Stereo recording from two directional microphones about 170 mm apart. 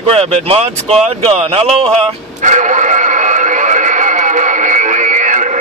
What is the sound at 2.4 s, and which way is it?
Radio, 45° right (ahead or behind).